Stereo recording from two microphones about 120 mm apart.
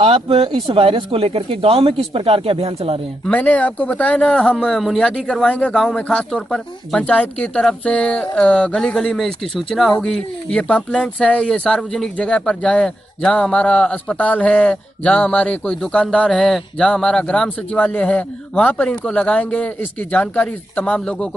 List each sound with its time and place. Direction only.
0.0 s speech: 55° right (ahead or behind)
3.3 s speech: 10° left (ahead or behind)